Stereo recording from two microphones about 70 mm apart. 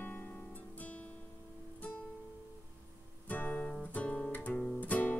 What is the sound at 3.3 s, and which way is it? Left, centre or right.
Music, left.